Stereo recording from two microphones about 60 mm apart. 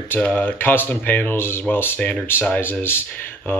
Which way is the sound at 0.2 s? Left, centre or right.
Left.